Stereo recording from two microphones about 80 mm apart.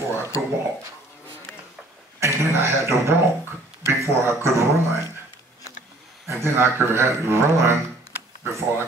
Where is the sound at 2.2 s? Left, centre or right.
Right.